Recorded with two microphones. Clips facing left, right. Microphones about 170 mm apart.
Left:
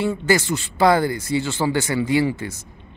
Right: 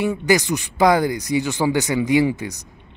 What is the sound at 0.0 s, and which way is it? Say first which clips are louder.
Speech: right 1 dB; 15° right (ahead or behind).